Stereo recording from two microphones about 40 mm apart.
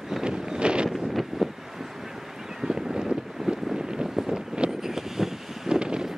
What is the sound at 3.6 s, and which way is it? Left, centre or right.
Vehicle, centre.